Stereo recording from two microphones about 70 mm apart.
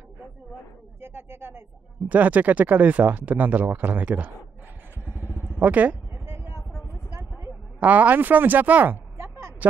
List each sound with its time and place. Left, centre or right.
1.0 s speech: right
2.0 s speech: right
5.1 s vehicle: right
6.2 s a sound: right
7.8 s speech: right